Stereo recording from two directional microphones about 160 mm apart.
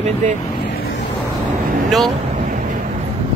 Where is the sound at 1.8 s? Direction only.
Centre (ahead or behind).